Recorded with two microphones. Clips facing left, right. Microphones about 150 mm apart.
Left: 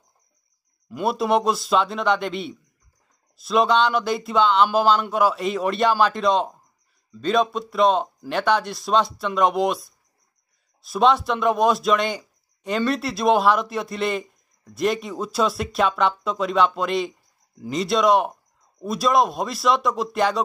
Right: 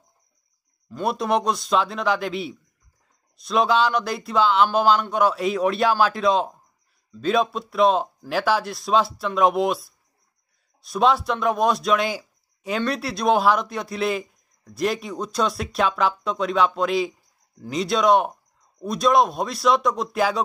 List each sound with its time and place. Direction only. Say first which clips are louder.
0.8 s speech: left 2 dB; 5° left (ahead or behind)